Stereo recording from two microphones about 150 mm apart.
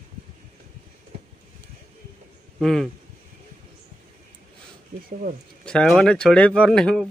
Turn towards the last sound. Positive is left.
turn(degrees=5)  # may be behind; listen again after turning